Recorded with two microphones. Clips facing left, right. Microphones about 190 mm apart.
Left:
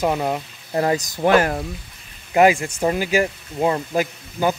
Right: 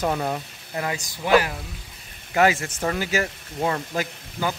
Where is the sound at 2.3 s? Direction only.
20° left (ahead or behind).